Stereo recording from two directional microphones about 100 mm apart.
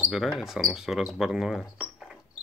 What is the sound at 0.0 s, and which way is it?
Speech, 5° right (ahead or behind).